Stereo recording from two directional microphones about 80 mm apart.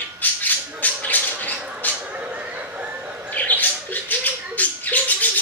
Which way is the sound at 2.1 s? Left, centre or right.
Centre.